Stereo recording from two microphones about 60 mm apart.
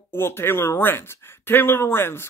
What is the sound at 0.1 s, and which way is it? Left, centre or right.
Speech, left.